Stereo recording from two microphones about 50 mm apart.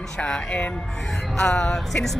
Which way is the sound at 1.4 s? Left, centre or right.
Centre.